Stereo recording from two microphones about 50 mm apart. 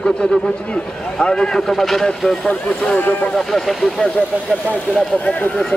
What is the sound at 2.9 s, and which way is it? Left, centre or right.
Speech, left.